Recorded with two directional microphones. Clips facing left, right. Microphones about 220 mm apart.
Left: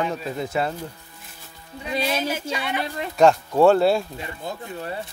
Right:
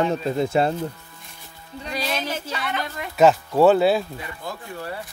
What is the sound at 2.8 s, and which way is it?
Speech, 30° left (ahead or behind).